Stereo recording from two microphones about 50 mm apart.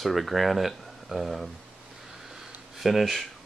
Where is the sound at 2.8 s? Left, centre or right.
Centre.